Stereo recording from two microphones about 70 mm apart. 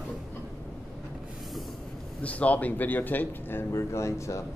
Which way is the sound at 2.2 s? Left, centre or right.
Centre.